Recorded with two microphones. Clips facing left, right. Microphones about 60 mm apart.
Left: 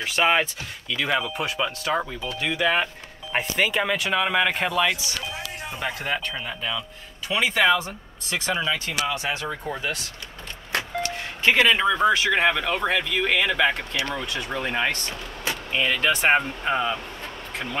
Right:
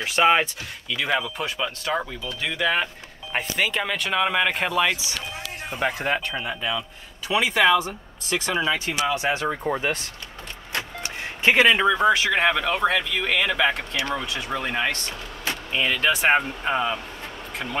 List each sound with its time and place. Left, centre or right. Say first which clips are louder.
0.0 s speech: right 2 dB; centre
5.9 s speech: right 3 dB; right
6.4 s speech: right 2 dB; centre
7.5 s speech: right 2 dB; centre
8.6 s speech: right 2 dB; centre; by 10.0 s right
11.0 s music: left 3 dB; centre
11.7 s speech: right 1 dB; centre